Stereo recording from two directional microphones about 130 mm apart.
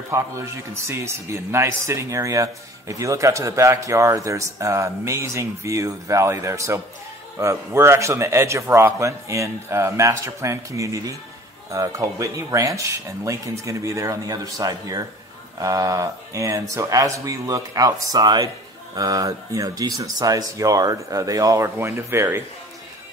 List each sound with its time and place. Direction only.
0.1 s a man's voice: 20° right (ahead or behind)